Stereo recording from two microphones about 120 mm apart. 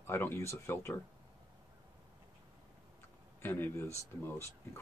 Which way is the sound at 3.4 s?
15° left (ahead or behind).